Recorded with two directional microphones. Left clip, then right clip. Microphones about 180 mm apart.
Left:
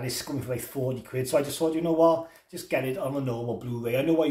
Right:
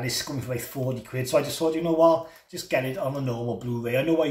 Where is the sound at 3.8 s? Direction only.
20° left (ahead or behind).